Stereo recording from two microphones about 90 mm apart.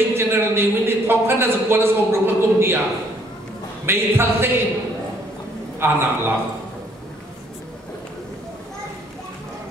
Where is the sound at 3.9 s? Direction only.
25° right (ahead or behind).